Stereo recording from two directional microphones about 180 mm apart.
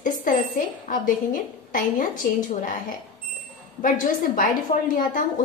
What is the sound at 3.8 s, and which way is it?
Speech, 50° left (ahead or behind).